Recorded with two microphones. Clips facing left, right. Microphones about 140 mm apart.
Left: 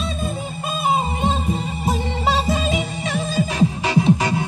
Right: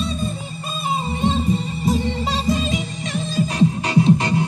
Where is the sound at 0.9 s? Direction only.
50° left (ahead or behind).